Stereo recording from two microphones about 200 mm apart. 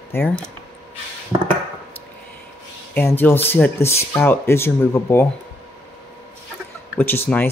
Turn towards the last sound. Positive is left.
turn(degrees=10)  # may be behind; listen again after turning